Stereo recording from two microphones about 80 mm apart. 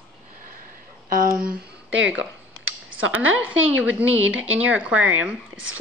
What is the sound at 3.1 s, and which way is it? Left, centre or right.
Speech, centre.